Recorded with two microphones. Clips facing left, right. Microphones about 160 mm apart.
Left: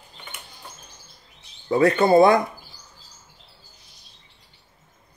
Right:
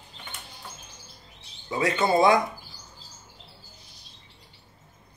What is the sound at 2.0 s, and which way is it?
Speech, 55° left (ahead or behind).